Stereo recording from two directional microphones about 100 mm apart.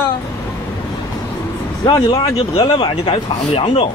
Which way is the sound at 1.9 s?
45° left (ahead or behind).